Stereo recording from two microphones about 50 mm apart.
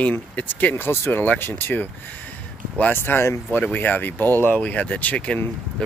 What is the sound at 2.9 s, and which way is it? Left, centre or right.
Speech, left.